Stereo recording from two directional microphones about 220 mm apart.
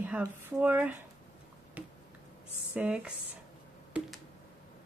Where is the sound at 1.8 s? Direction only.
5° right (ahead or behind).